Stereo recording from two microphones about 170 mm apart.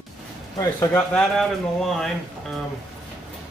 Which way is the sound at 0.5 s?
20° left (ahead or behind).